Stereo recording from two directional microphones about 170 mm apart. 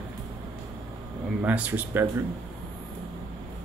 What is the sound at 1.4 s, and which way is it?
Speech, 10° right (ahead or behind).